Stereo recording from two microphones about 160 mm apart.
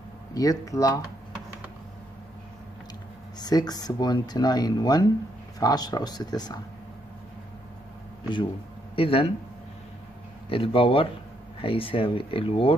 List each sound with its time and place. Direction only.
0.3 s speech: 20° left (ahead or behind)
3.3 s speech: 25° left (ahead or behind)
8.9 s speech: 35° left (ahead or behind)
10.5 s speech: 35° left (ahead or behind)